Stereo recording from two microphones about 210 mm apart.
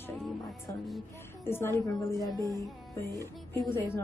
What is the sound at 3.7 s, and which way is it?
Speech, 10° left (ahead or behind).